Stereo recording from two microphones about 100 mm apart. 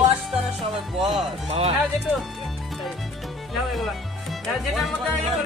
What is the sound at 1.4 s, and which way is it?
Speech, 90° right.